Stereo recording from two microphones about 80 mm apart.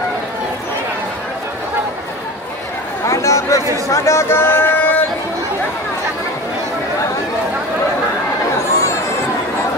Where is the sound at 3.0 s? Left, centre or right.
Left.